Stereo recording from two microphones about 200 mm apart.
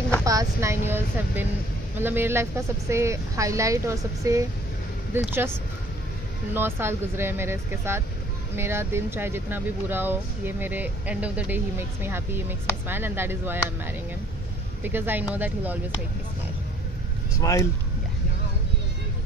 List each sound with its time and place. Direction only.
0.2 s speech: 15° right (ahead or behind)
6.5 s speech: 10° right (ahead or behind)
14.8 s speech: 10° right (ahead or behind)
17.4 s speech: 15° left (ahead or behind)